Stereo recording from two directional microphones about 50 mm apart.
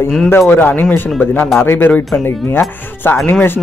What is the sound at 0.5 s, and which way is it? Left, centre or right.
Speech, left.